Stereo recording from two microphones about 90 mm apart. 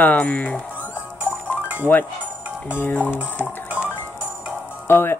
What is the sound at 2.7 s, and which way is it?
Speech, 20° left (ahead or behind).